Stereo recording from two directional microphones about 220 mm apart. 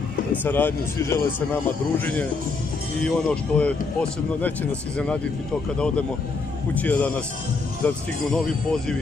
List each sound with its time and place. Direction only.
0.3 s speech: 10° left (ahead or behind)
6.7 s speech: 5° left (ahead or behind)